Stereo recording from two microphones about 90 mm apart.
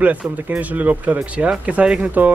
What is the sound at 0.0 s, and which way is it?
Speech, 15° right (ahead or behind).